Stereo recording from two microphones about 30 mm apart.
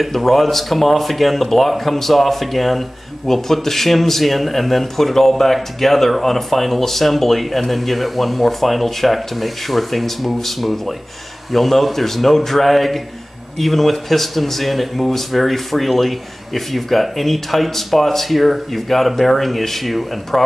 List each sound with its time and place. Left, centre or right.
0.0 s speech: centre